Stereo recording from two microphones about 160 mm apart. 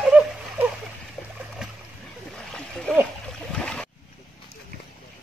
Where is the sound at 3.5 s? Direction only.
5° left (ahead or behind).